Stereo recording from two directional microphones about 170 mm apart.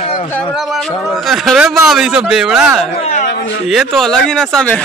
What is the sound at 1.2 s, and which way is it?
Speech, centre (ahead or behind).